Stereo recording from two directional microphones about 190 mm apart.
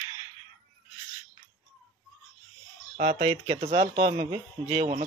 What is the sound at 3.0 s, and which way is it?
Speech, 35° right (ahead or behind).